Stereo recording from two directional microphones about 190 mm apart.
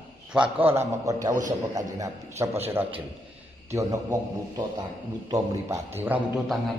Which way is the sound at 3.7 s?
15° right (ahead or behind).